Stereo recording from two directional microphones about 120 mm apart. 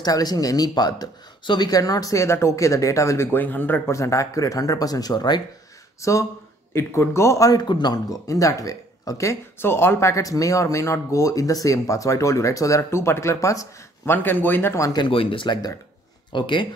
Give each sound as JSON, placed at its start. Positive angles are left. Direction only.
{"t": 0.0, "sound": "speech", "side_deg": 35}
{"t": 14.9, "sound": "speech", "side_deg": 45}